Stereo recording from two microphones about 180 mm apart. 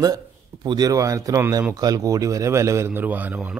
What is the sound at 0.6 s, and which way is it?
Speech, 20° right (ahead or behind).